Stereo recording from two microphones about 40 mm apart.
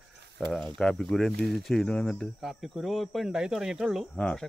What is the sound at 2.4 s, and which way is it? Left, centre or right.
Speech, centre.